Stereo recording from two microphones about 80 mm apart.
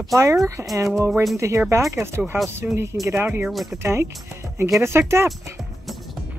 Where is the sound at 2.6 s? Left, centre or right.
Centre.